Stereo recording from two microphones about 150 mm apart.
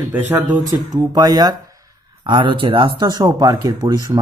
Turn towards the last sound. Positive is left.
turn(degrees=-25)  # may be behind; listen again after turning